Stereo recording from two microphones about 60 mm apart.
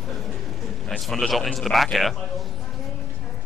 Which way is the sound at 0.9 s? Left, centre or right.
Centre.